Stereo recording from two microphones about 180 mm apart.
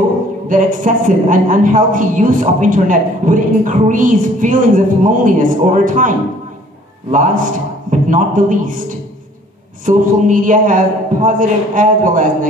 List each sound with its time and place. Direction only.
0.5 s a woman's voice: 45° right (ahead or behind)